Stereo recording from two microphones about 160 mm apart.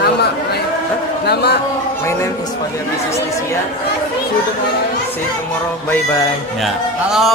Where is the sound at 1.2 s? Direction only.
90° left.